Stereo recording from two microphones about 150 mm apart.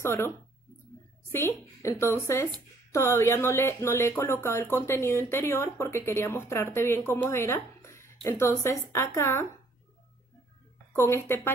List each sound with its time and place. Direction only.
0.0 s speech: 15° left (ahead or behind)
1.3 s speech: 20° left (ahead or behind)
11.0 s speech: 15° left (ahead or behind)